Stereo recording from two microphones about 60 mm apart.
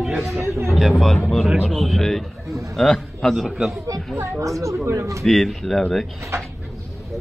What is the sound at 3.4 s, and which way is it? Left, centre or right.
Speech, centre.